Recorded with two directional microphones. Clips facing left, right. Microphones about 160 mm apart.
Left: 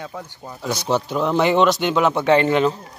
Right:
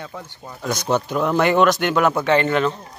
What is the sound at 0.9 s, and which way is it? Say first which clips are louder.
Speech: even; 10° right (ahead or behind).